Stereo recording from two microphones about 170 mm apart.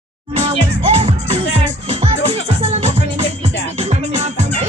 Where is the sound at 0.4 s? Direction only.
40° right (ahead or behind).